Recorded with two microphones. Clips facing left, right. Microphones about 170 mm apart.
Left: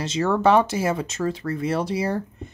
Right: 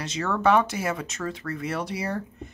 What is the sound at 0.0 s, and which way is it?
Speech, 30° left (ahead or behind).